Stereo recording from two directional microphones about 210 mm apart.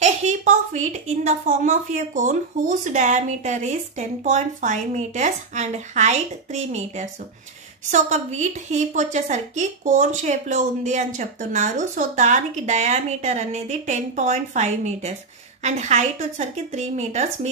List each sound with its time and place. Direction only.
0.0 s a woman's voice: 35° right (ahead or behind)